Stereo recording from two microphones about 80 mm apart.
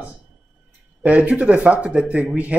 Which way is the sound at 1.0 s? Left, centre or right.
Centre.